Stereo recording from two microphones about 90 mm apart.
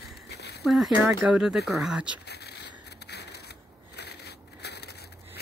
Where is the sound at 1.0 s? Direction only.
15° right (ahead or behind).